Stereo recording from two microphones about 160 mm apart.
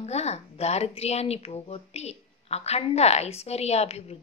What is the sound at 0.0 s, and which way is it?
Speech, 40° left (ahead or behind).